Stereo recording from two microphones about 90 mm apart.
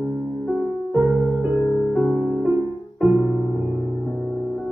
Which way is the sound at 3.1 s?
20° right (ahead or behind).